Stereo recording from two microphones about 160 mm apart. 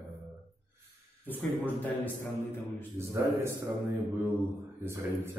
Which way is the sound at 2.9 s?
15° right (ahead or behind).